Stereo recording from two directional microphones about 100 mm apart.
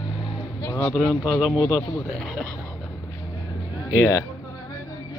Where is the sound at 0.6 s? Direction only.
35° left (ahead or behind).